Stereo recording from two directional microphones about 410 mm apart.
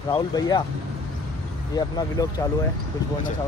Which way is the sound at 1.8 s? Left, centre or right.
Centre.